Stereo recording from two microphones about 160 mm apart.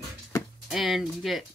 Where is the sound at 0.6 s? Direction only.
Centre (ahead or behind).